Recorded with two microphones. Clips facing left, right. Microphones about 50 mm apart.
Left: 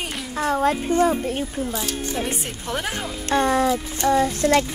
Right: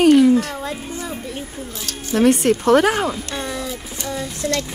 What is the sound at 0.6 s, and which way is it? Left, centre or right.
Speech, left.